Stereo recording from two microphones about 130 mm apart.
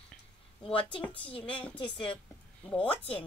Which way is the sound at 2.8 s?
45° left (ahead or behind).